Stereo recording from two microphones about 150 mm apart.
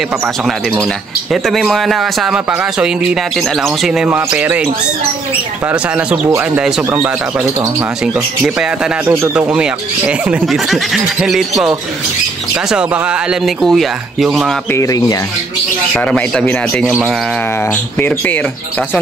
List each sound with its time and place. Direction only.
1.3 s speech: centre (ahead or behind)
5.7 s speech: 10° right (ahead or behind)
8.5 s speech: 5° right (ahead or behind)
12.6 s speech: 5° right (ahead or behind)
14.7 s speech: 20° left (ahead or behind)
15.9 s speech: 5° left (ahead or behind)
17.9 s speech: 10° left (ahead or behind)